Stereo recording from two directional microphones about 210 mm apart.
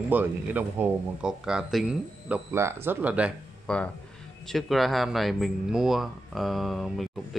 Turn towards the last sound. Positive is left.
turn(degrees=0)  # may be behind; listen again after turning